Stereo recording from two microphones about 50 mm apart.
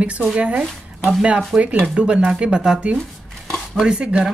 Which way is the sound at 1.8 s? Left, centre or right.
Centre.